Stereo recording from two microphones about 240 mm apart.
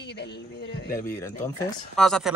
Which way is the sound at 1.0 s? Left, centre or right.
Centre.